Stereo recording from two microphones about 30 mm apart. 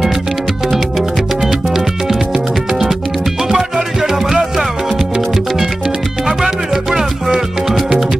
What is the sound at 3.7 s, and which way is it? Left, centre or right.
Music, centre.